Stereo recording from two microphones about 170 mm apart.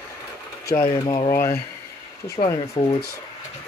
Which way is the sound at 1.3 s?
15° left (ahead or behind).